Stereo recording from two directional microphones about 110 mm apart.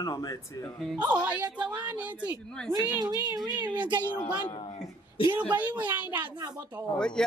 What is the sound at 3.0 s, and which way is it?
Speech, 35° right (ahead or behind).